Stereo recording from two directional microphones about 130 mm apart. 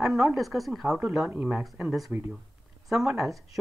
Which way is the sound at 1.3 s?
10° right (ahead or behind).